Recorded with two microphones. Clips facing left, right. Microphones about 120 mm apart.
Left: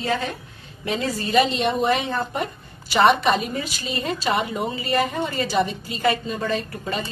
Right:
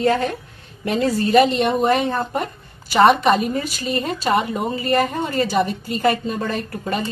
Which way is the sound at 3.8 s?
50° right (ahead or behind).